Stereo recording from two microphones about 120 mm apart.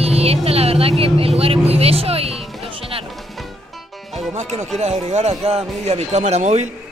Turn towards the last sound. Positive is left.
turn(degrees=-70)  # may be behind; listen again after turning